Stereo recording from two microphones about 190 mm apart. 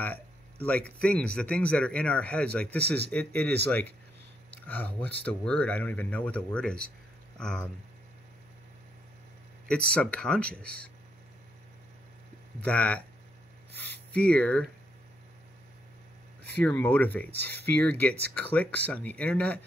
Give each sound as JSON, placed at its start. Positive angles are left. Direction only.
{"t": 0.0, "sound": "speech", "side_deg": 10}
{"t": 9.7, "sound": "speech", "side_deg": 5}
{"t": 12.6, "sound": "speech", "side_deg": 5}
{"t": 14.1, "sound": "speech", "side_deg": 5}
{"t": 16.5, "sound": "speech", "side_deg": 10}